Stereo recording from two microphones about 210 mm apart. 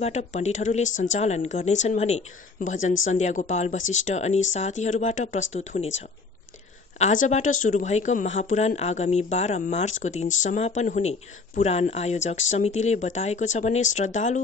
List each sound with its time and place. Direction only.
0.0 s speech: 35° left (ahead or behind)
7.0 s speech: 35° left (ahead or behind)